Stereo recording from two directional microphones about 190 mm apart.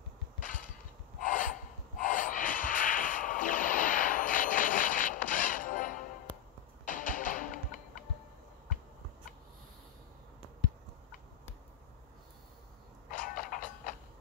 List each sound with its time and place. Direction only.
0.4 s a sound: 45° left (ahead or behind)
6.9 s music: 45° left (ahead or behind)
13.1 s vehicle: 45° left (ahead or behind)